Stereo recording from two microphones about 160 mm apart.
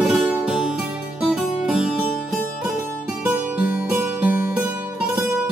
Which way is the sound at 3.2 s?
10° right (ahead or behind).